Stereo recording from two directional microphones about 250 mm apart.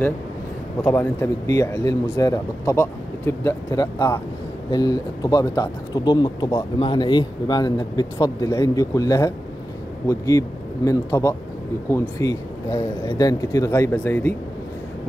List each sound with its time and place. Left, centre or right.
0.8 s speech: centre